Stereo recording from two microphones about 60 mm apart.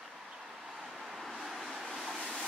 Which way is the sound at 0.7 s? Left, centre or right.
Centre.